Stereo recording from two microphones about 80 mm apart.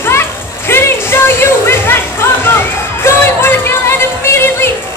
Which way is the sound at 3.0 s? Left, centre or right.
Left.